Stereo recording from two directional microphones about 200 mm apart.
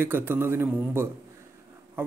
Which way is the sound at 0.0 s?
10° right (ahead or behind).